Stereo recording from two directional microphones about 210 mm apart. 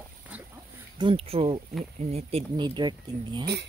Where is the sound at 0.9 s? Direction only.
25° right (ahead or behind).